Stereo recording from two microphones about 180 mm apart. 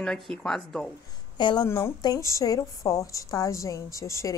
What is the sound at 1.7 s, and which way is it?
A woman's voice, 15° left (ahead or behind).